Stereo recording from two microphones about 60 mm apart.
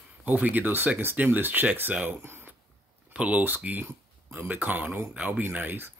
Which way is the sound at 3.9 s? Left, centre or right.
Right.